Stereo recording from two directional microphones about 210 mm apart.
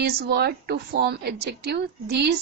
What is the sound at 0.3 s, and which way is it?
A woman's voice, 50° right (ahead or behind).